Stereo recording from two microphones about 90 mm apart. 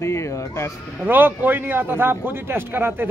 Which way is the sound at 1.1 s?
20° right (ahead or behind).